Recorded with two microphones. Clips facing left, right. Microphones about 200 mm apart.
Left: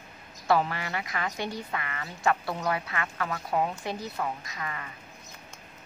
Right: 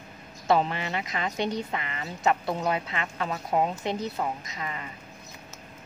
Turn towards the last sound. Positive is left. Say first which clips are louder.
# right 2 dB
turn(degrees=-20)  # may be behind; listen again after turning